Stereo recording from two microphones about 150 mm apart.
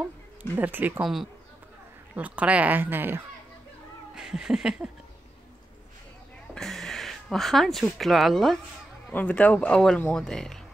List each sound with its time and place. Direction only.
0.0 s speech: 10° right (ahead or behind)
4.1 s cat: 5° right (ahead or behind)
6.5 s speech: centre (ahead or behind)
10.1 s cat: 5° left (ahead or behind)